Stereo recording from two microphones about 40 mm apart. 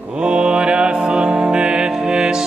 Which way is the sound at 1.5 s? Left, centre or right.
Right.